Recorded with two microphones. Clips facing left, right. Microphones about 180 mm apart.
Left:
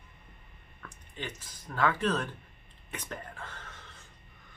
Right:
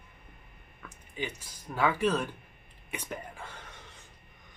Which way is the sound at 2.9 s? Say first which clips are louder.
Right 2 dB; 10° right (ahead or behind).